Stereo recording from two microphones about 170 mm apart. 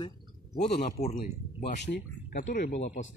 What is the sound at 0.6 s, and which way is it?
Speech, 40° left (ahead or behind).